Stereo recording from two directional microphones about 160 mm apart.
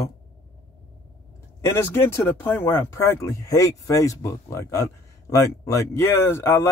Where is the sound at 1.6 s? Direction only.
15° left (ahead or behind).